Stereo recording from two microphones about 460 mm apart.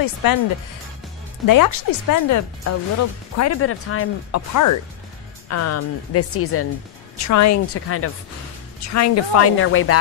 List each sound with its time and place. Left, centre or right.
0.0 s speech: left
1.4 s speech: left
5.5 s speech: left